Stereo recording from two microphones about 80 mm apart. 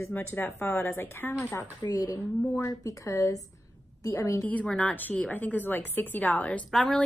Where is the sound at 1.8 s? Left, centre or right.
Left.